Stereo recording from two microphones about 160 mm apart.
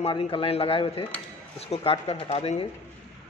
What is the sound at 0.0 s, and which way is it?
Speech, 35° left (ahead or behind).